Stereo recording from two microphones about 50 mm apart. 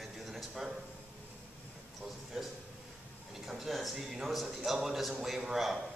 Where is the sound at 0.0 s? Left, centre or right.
Centre.